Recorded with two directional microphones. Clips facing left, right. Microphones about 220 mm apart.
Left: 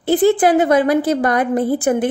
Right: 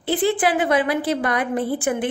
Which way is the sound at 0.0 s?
45° left (ahead or behind).